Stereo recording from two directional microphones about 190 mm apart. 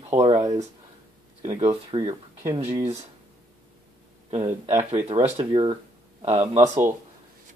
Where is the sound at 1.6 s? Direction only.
30° right (ahead or behind).